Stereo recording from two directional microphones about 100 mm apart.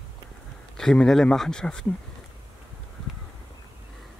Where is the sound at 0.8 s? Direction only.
5° left (ahead or behind).